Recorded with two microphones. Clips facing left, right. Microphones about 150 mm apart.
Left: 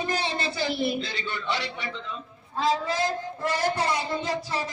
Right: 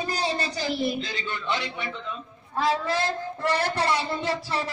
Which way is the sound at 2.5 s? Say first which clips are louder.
Right 1 dB; 65° right (ahead or behind).